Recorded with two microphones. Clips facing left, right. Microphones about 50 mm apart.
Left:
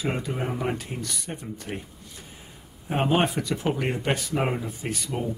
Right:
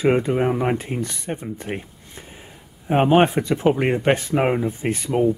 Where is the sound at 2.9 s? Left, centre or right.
Right.